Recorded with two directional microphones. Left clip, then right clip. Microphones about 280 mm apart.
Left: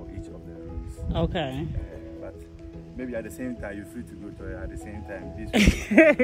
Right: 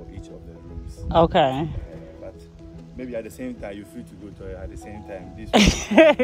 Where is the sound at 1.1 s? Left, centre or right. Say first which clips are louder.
Right 12 dB; centre.